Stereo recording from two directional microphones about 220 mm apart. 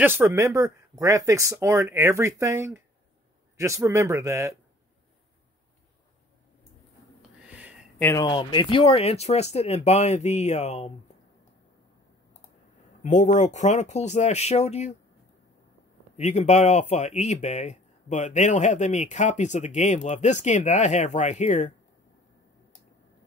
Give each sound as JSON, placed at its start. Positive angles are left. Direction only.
{"t": 0.0, "sound": "speech", "side_deg": -10}
{"t": 7.2, "sound": "a sound", "side_deg": -5}
{"t": 8.0, "sound": "speech", "side_deg": 15}
{"t": 13.0, "sound": "speech", "side_deg": 35}
{"t": 16.2, "sound": "speech", "side_deg": 30}